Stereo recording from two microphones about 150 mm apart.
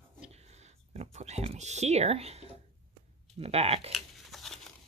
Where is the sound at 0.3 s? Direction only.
45° right (ahead or behind).